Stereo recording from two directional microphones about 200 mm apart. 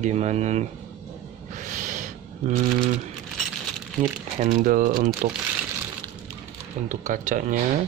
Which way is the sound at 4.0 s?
35° right (ahead or behind).